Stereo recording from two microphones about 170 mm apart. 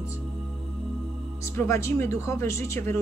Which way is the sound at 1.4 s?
15° left (ahead or behind).